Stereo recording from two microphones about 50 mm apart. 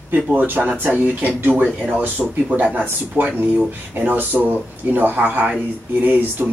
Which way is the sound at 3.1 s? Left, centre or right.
Right.